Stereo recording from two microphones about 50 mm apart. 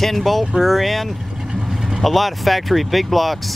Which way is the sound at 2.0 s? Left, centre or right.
Centre.